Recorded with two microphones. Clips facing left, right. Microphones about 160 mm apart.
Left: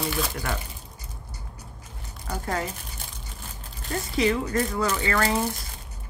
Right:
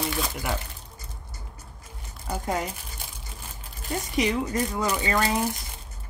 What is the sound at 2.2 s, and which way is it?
Speech, 15° right (ahead or behind).